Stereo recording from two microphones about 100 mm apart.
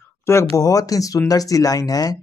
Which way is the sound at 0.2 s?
30° left (ahead or behind).